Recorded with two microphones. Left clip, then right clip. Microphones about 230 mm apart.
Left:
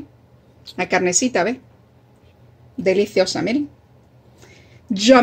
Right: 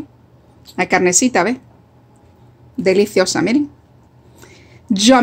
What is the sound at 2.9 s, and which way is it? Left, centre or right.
Speech, centre.